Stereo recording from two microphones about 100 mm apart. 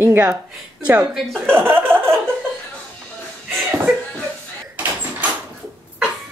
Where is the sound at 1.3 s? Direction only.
20° right (ahead or behind).